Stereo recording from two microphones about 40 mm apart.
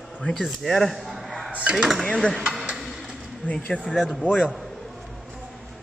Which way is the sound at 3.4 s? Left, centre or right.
Left.